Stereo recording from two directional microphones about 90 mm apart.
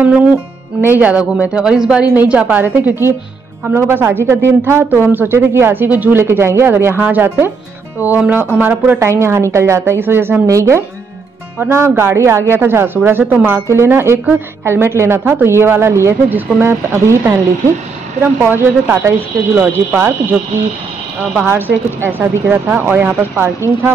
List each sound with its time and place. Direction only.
0.7 s a woman's voice: 20° right (ahead or behind)
21.5 s a woman's voice: 25° right (ahead or behind)